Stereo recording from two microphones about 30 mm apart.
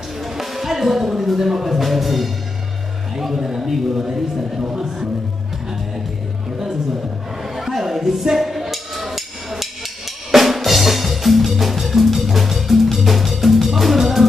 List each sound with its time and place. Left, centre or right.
0.2 s a man's voice: centre; by 4.9 s right
7.4 s a sound: centre
10.3 s music: centre